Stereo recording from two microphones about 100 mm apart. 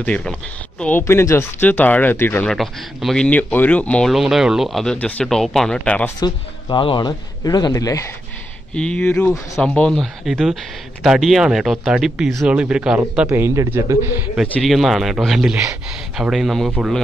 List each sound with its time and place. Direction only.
0.0 s speech: 10° left (ahead or behind)
1.0 s speech: 25° left (ahead or behind)
2.4 s speech: centre (ahead or behind)
3.3 s speech: 15° left (ahead or behind)
4.1 s speech: 5° right (ahead or behind)
4.9 s speech: 10° left (ahead or behind)
6.1 s speech: 45° left (ahead or behind)
7.7 s speech: 30° left (ahead or behind)
8.7 s speech: 10° left (ahead or behind); by 13.3 s 10° right (ahead or behind)
13.7 s a man's voice: 25° right (ahead or behind)
14.6 s speech: centre (ahead or behind)